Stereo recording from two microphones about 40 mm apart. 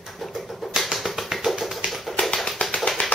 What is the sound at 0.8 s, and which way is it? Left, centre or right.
Music, centre.